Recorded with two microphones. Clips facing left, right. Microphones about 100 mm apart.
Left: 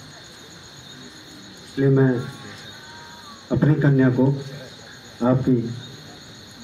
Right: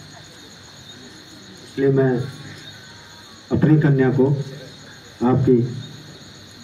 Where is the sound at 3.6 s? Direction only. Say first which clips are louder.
Right 2 dB; 20° left (ahead or behind).